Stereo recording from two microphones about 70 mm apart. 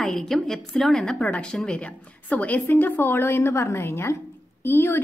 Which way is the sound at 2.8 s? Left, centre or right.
Left.